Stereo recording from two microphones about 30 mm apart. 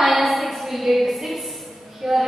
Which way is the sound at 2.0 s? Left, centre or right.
Centre.